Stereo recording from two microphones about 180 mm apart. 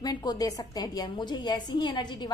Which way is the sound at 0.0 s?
20° left (ahead or behind).